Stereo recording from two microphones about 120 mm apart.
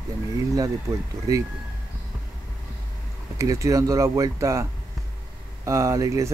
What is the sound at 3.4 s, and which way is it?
Speech, 25° right (ahead or behind).